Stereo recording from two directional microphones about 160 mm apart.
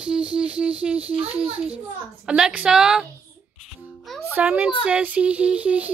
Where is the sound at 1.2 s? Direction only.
35° right (ahead or behind).